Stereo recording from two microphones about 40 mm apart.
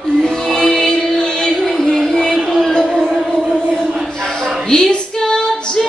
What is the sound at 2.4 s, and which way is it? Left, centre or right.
Music, centre.